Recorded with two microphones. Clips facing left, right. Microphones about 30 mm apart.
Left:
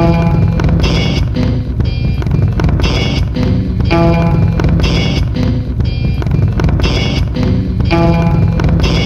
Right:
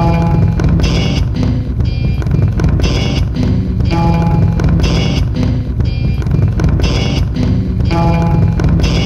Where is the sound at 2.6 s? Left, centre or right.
Centre.